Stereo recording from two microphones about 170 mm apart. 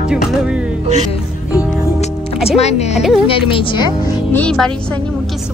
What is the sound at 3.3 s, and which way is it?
Speech, 30° left (ahead or behind).